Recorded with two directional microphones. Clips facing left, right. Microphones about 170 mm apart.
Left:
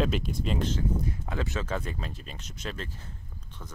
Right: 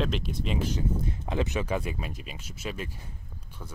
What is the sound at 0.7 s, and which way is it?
Speech, 20° right (ahead or behind).